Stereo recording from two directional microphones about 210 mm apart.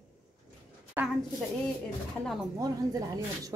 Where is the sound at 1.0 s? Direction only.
10° right (ahead or behind).